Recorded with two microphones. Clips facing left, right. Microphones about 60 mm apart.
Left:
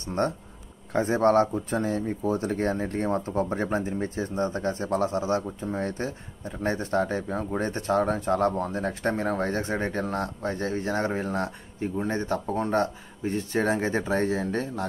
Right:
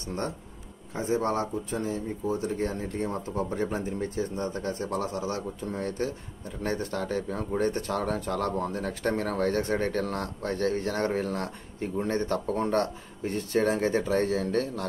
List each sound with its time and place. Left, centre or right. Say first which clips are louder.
0.2 s speech: left 6 dB; left
11.8 s speech: even; centre
12.5 s speech: left 3 dB; centre
13.7 s speech: even; left